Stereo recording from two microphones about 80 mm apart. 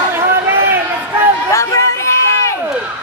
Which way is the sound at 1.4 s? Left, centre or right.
Left.